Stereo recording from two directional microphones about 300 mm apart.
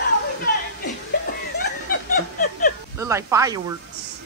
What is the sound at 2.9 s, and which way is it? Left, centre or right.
Speech, centre.